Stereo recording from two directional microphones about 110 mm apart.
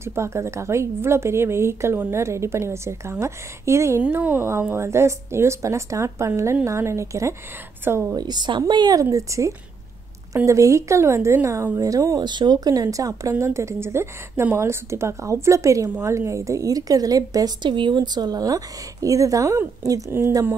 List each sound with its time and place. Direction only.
0.0 s a woman's voice: 25° right (ahead or behind)
8.2 s a woman's voice: 40° right (ahead or behind)
9.0 s a woman's voice: 30° right (ahead or behind)
12.2 s a woman's voice: 45° right (ahead or behind)
17.6 s a woman's voice: 45° right (ahead or behind); by 20.3 s 20° right (ahead or behind)